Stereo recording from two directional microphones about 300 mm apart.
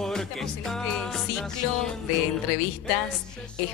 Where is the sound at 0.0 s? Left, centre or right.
Centre.